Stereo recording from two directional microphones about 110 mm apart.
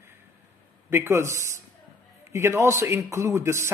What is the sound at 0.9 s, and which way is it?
Speech, 20° right (ahead or behind).